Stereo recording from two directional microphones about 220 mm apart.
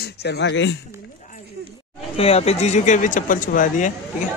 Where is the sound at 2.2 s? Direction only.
30° left (ahead or behind).